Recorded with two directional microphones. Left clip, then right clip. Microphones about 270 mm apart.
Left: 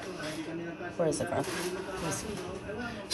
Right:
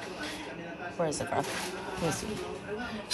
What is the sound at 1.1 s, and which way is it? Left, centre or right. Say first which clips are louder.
Speech: left 1 dB; centre.